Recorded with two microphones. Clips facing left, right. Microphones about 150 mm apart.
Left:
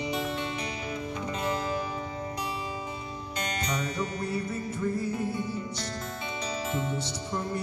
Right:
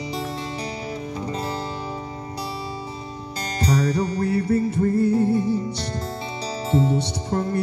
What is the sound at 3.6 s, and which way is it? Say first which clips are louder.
Music: right 12 dB; 35° right (ahead or behind).